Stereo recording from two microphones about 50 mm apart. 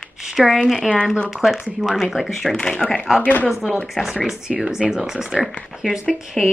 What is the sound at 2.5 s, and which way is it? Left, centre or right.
Speech, centre.